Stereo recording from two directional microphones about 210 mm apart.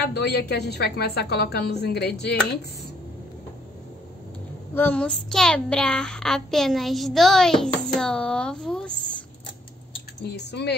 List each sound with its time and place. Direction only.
0.0 s a woman's voice: 50° left (ahead or behind)
4.7 s child singing: 5° left (ahead or behind)
10.2 s a woman's voice: 55° left (ahead or behind)